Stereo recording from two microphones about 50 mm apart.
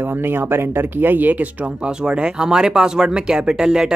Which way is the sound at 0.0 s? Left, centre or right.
Right.